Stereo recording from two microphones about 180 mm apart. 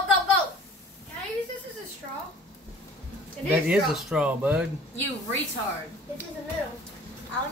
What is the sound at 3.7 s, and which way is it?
Speech, 5° right (ahead or behind).